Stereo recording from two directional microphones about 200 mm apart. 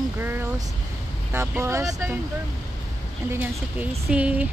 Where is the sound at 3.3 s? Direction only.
10° right (ahead or behind).